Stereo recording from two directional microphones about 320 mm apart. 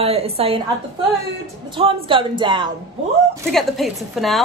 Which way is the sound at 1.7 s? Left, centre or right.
Centre.